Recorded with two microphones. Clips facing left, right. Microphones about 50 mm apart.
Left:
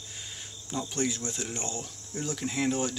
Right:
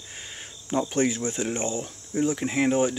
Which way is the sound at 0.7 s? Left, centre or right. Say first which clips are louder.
Right 7 dB; right.